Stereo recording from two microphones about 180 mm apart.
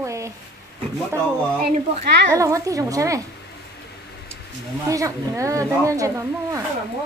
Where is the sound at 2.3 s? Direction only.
15° right (ahead or behind).